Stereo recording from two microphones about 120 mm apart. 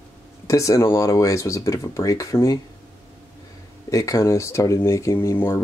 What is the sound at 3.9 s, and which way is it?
Speech, 25° left (ahead or behind).